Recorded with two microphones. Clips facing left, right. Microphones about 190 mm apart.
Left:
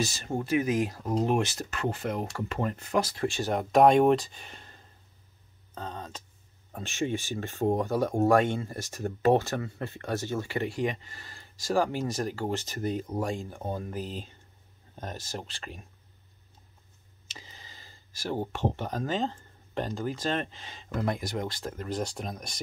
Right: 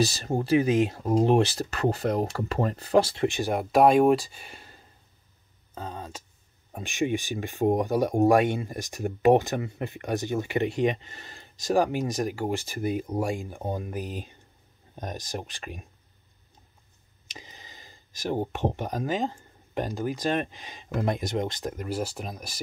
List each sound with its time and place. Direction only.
0.0 s speech: 35° right (ahead or behind); by 4.8 s 10° right (ahead or behind)
5.8 s a sound: 10° right (ahead or behind)
6.7 s speech: 15° right (ahead or behind)
17.3 s speech: 15° right (ahead or behind)